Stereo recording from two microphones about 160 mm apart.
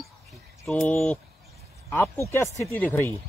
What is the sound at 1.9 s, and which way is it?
Speech, 15° left (ahead or behind).